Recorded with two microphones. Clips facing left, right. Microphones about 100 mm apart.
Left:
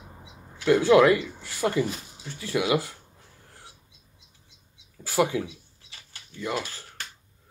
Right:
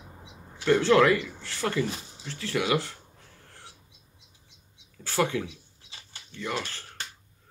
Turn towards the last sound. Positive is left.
turn(degrees=10)  # may be behind; listen again after turning